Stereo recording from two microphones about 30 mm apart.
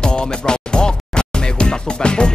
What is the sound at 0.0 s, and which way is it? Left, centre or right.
Music, left.